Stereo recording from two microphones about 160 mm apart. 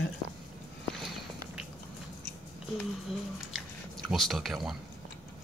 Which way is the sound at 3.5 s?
Centre (ahead or behind).